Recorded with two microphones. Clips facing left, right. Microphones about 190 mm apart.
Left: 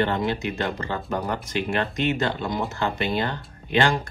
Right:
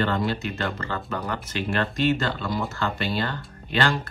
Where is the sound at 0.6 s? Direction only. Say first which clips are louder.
Left 2 dB; 15° left (ahead or behind).